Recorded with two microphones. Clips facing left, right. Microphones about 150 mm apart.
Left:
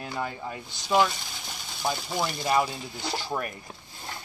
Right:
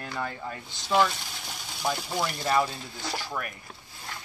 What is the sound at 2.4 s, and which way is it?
Speech, 15° left (ahead or behind).